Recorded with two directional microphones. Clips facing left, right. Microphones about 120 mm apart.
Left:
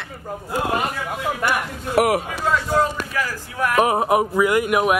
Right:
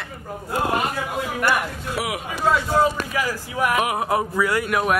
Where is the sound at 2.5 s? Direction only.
10° right (ahead or behind).